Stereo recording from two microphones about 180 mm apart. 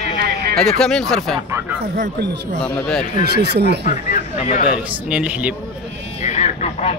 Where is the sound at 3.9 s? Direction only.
45° left (ahead or behind).